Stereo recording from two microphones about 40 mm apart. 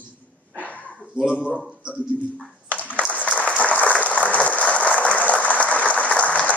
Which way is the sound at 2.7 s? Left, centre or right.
Left.